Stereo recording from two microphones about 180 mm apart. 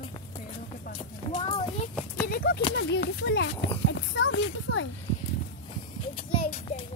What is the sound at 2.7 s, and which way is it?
Speech, 75° left (ahead or behind).